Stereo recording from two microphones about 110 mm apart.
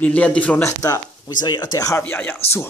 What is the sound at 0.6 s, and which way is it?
Speech, 30° left (ahead or behind).